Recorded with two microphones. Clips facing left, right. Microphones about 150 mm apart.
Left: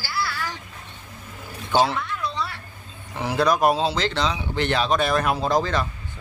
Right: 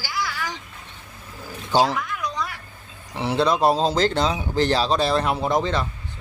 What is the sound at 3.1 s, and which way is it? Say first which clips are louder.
Speech: even; 25° right (ahead or behind).